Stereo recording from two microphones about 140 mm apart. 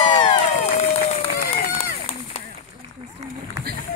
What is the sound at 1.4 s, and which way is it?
Run, 90° left.